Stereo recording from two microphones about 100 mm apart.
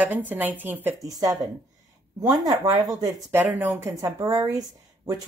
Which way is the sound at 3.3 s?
20° right (ahead or behind).